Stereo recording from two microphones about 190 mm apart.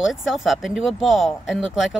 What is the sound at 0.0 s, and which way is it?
Speech, centre (ahead or behind).